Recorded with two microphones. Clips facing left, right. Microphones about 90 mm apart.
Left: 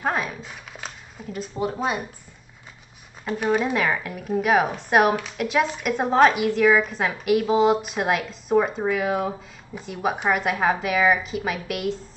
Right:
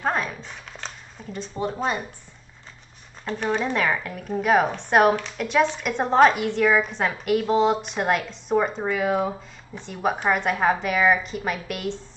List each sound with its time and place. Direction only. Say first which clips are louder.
0.0 s speech: even; 5° left (ahead or behind)
3.3 s speech: left 2 dB; 5° left (ahead or behind)